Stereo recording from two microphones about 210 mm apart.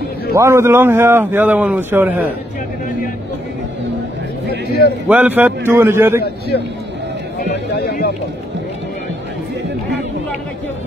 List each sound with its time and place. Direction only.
0.3 s a man's voice: 15° right (ahead or behind)
5.0 s a man's voice: 5° right (ahead or behind)
7.7 s speech: 50° left (ahead or behind)